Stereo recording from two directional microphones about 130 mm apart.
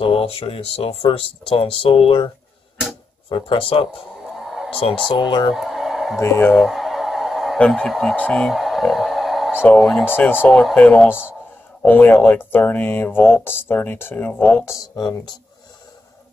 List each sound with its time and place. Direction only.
0.0 s speech: 45° left (ahead or behind)
5.5 s a sound: 5° right (ahead or behind)
6.1 s speech: 20° left (ahead or behind)
6.6 s a sound: centre (ahead or behind)
9.6 s speech: 10° left (ahead or behind)
10.0 s speech: 15° left (ahead or behind)
14.7 s speech: 30° left (ahead or behind)